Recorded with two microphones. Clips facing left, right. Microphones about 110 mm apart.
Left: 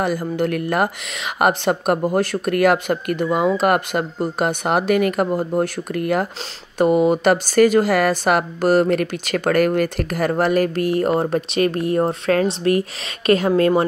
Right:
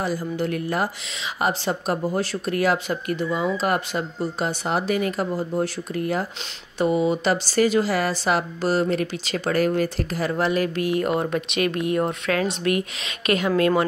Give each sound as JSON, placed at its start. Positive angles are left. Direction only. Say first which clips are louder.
{"t": 0.0, "sound": "speech", "louder": "left 5 dB", "side_deg": 60}